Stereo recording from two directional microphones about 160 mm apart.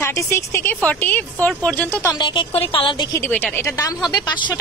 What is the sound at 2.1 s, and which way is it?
Speech, 30° left (ahead or behind).